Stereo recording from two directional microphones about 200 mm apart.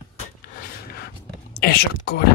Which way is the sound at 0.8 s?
50° left (ahead or behind).